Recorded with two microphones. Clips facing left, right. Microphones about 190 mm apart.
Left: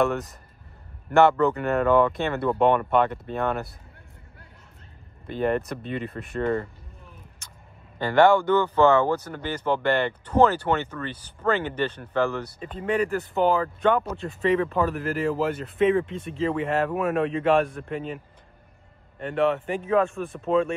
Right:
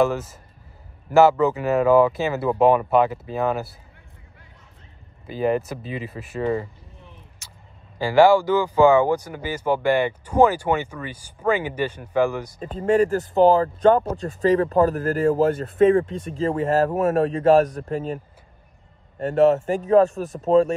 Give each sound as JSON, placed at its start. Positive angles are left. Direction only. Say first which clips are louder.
{"t": 0.0, "sound": "speech", "louder": "right 3 dB", "side_deg": 0}
{"t": 5.2, "sound": "speech", "louder": "right 2 dB", "side_deg": -5}
{"t": 7.4, "sound": "vehicle", "louder": "even", "side_deg": -5}
{"t": 8.0, "sound": "speech", "louder": "right 3 dB", "side_deg": -5}
{"t": 12.5, "sound": "speech", "louder": "right 8 dB", "side_deg": -40}